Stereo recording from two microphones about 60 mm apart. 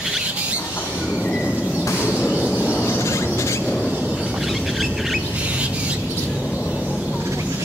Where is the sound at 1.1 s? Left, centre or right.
Centre.